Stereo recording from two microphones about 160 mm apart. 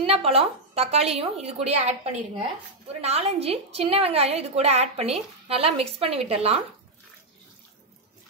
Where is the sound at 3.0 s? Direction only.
40° right (ahead or behind).